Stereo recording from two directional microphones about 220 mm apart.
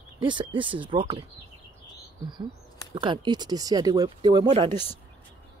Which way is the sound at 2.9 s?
20° right (ahead or behind).